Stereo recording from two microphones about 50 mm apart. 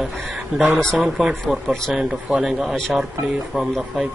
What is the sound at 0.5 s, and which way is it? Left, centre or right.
Speech, centre.